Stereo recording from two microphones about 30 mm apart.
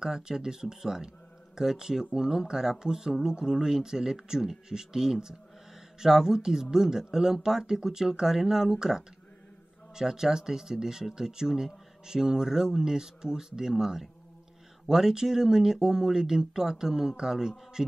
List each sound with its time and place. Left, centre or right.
0.0 s speech: right